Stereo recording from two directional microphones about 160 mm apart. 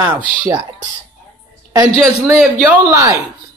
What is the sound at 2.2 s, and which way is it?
Speech, 15° right (ahead or behind).